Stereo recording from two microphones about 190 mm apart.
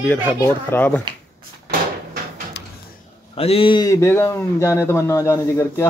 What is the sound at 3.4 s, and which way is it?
Speech, 30° left (ahead or behind).